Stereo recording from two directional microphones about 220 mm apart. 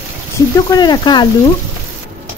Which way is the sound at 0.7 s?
20° left (ahead or behind).